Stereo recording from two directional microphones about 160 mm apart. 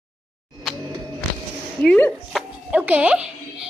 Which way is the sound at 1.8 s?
10° left (ahead or behind).